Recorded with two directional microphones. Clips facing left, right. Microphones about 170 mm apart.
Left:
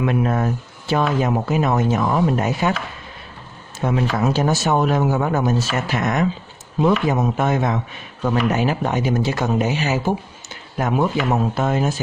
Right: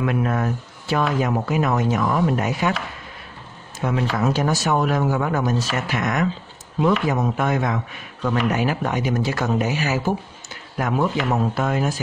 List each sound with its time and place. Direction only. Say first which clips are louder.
0.0 s speech: left 2 dB; 25° left (ahead or behind)
3.8 s speech: left 2 dB; 30° left (ahead or behind)